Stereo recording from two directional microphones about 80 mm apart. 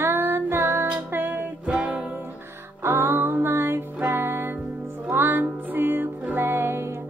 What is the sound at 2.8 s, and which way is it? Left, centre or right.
Music, right.